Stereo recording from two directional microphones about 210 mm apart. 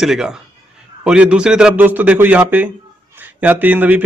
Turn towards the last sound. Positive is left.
turn(degrees=-10)  # may be behind; listen again after turning